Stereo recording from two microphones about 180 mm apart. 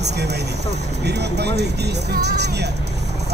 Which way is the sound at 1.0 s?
70° right (ahead or behind).